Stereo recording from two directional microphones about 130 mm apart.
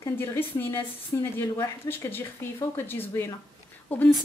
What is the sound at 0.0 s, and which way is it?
Speech, 20° left (ahead or behind).